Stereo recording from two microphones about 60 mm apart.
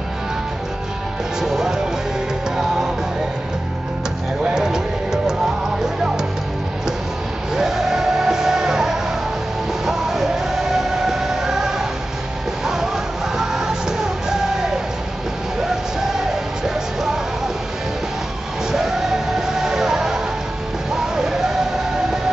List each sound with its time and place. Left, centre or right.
1.4 s music: centre
4.5 s music: centre
7.5 s music: centre
16.3 s music: centre
18.7 s music: centre